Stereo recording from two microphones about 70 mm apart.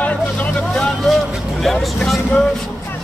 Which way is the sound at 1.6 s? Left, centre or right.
Centre.